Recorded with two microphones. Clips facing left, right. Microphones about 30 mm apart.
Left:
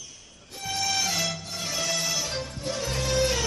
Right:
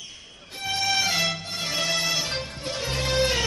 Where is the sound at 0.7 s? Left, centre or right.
Right.